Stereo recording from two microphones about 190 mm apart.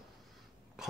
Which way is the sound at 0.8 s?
5° right (ahead or behind).